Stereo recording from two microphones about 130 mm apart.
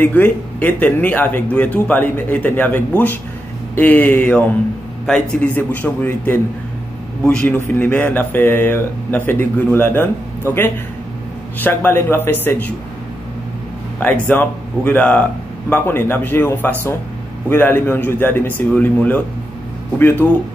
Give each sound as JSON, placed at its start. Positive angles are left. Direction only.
{"t": 0.0, "sound": "speech", "side_deg": 15}
{"t": 13.9, "sound": "speech", "side_deg": 15}